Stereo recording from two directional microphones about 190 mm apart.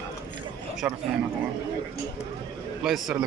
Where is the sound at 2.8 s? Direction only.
Centre (ahead or behind).